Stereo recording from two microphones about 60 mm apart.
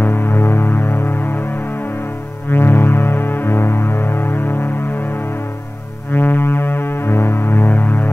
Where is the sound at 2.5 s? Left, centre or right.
Left.